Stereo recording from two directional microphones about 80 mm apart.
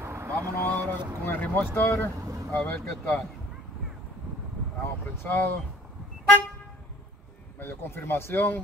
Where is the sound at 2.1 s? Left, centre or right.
Right.